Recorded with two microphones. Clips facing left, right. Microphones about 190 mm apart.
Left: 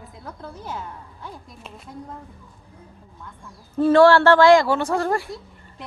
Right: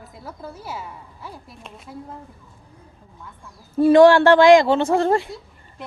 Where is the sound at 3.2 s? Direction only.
10° right (ahead or behind).